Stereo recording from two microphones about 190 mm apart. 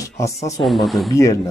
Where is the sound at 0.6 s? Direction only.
Centre (ahead or behind).